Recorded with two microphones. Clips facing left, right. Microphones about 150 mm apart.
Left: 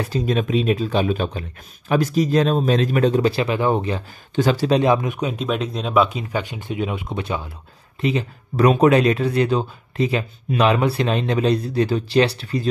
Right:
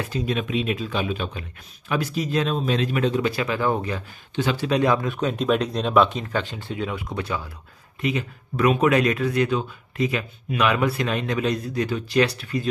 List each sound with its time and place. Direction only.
0.0 s speech: 40° left (ahead or behind); by 4.0 s 25° left (ahead or behind)
4.4 s speech: 40° left (ahead or behind); by 5.3 s 15° left (ahead or behind)
5.3 s speech: centre (ahead or behind); by 12.6 s 35° left (ahead or behind)